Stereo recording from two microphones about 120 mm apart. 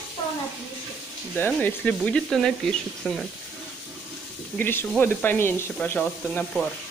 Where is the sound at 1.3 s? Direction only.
15° left (ahead or behind).